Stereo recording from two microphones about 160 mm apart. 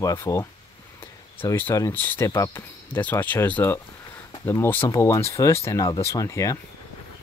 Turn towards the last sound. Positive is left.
turn(degrees=20)  # may be behind; listen again after turning